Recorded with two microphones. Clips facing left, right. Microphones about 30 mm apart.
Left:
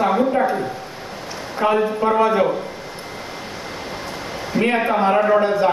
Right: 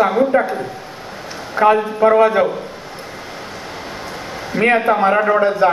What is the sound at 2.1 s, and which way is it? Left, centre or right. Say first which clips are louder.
Speech: right 5 dB; right.